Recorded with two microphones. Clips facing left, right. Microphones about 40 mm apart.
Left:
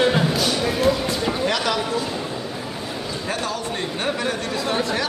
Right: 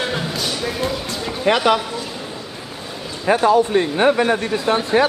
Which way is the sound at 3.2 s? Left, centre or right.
Right.